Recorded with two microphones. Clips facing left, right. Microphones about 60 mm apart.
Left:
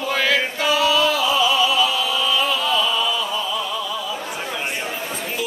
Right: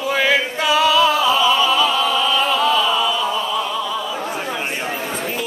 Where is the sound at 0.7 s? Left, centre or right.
Right.